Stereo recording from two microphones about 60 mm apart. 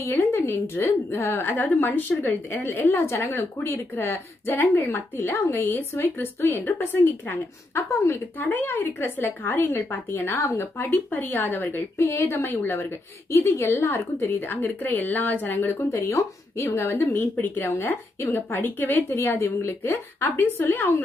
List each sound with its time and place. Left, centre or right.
0.1 s a woman's voice: left
2.9 s a woman's voice: left
3.2 s a woman's voice: left
3.5 s a woman's voice: left
13.3 s a woman's voice: left
14.4 s a woman's voice: left
15.8 s a woman's voice: left
19.1 s a woman's voice: left